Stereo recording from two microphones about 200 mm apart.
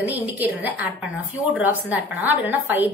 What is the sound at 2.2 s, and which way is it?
Speech, 10° right (ahead or behind).